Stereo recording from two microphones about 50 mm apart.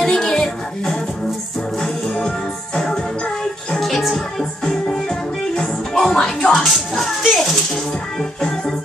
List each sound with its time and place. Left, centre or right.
0.0 s music: centre
3.7 s music: centre
6.6 s music: centre